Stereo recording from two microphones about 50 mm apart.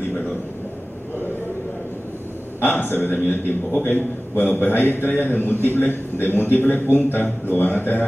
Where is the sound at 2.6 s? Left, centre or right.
Left.